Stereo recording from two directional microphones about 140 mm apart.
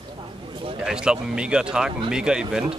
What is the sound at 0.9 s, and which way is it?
Speech, 5° right (ahead or behind).